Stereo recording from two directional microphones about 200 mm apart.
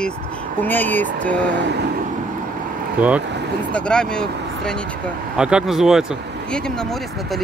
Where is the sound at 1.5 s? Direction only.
55° right (ahead or behind).